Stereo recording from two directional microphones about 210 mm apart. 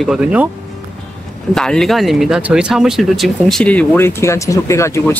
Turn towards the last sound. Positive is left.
turn(degrees=15)  # may be behind; listen again after turning